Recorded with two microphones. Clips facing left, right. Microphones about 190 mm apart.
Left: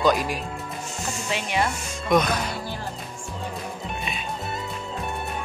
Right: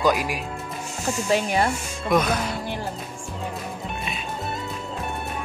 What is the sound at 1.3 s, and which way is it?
Speech, 40° right (ahead or behind).